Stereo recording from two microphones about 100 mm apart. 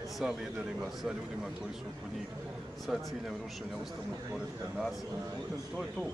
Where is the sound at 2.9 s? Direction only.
Centre (ahead or behind).